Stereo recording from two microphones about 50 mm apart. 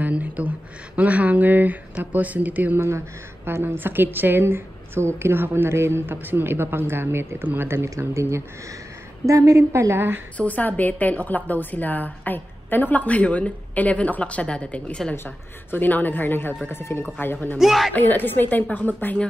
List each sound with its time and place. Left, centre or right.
0.0 s a sound: right
0.9 s speech: right
3.4 s a woman's voice: right
8.1 s speech: right
9.2 s a woman's voice: right
9.9 s a woman's voice: right
10.3 s a woman's voice: left
15.7 s a woman's voice: left
17.6 s speech: centre
17.9 s a woman's voice: left